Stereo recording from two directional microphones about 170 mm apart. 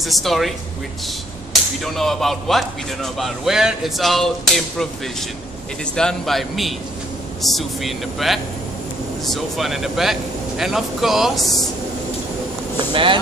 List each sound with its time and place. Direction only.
0.0 s speech: centre (ahead or behind)
12.9 s speech: 30° right (ahead or behind)